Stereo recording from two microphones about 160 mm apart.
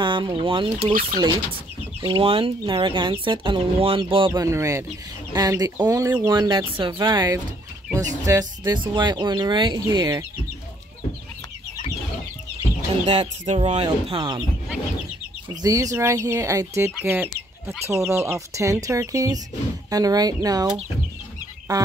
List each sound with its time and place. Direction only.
0.0 s speech: 30° right (ahead or behind)
2.0 s speech: 35° right (ahead or behind)
4.3 s speech: 20° right (ahead or behind)
13.0 s speech: 45° right (ahead or behind)
13.7 s speech: 25° right (ahead or behind)
15.6 s speech: 20° right (ahead or behind)